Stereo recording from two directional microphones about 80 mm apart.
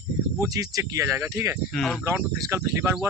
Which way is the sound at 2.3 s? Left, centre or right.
Right.